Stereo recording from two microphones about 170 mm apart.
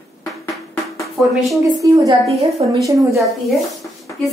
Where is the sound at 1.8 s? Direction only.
20° right (ahead or behind).